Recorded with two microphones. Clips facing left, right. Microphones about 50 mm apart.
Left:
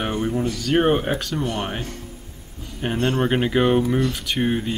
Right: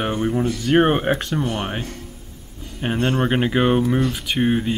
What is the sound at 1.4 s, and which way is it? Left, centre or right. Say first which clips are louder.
Speech: right 1 dB; centre.